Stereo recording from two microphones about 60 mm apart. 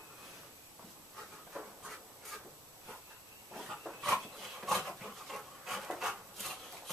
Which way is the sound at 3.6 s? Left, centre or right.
Centre.